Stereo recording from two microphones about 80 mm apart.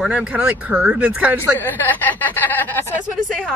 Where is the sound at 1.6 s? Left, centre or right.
Left.